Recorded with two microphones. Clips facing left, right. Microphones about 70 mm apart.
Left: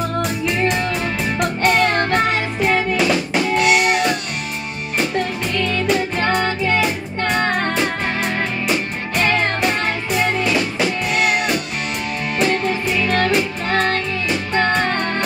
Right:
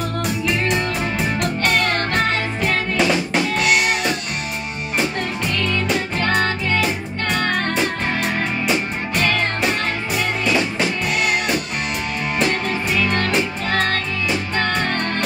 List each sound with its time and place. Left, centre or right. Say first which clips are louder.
0.2 s music: even; centre
1.8 s music: left 3 dB; left
3.0 s drum: left 1 dB; centre
7.3 s music: left 2 dB; left
9.1 s music: left 3 dB; centre
14.6 s music: left 5 dB; left